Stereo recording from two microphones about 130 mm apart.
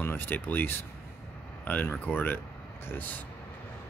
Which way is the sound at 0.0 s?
15° left (ahead or behind).